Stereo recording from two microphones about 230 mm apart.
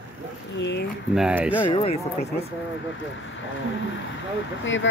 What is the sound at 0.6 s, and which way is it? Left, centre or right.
Speech, left.